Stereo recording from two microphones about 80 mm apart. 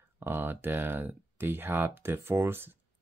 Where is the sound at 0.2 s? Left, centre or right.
Right.